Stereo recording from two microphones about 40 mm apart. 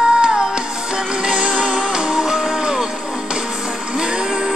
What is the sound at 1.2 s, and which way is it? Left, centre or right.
Music, right.